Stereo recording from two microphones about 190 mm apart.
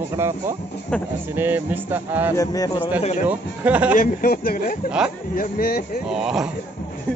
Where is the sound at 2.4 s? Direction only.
20° left (ahead or behind).